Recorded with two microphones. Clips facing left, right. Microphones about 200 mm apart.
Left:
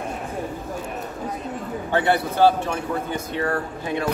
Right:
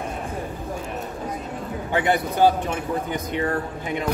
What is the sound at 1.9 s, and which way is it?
Speech, 15° right (ahead or behind).